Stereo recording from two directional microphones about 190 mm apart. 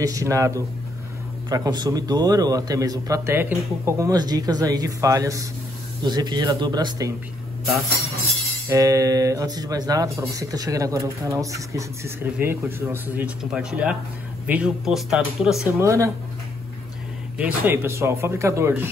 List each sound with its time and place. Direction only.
0.0 s a man's voice: 15° right (ahead or behind)
8.6 s speech: 15° right (ahead or behind)
15.8 s speech: 15° right (ahead or behind)
17.4 s speech: 10° right (ahead or behind)